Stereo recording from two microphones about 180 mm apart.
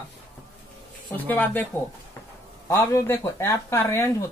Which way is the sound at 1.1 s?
10° left (ahead or behind).